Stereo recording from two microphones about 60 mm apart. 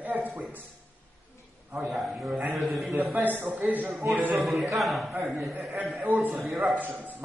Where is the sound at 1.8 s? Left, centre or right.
Centre.